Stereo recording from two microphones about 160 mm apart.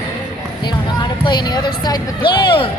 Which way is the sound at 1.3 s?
30° left (ahead or behind).